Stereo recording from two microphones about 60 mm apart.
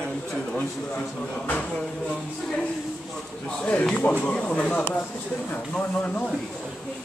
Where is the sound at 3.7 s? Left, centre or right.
Left.